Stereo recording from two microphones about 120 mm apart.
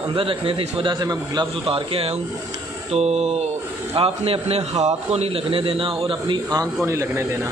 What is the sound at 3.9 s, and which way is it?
A man's voice, 55° right (ahead or behind).